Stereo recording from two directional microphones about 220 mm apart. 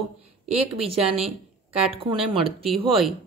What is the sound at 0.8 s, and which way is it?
A woman's voice, 25° right (ahead or behind).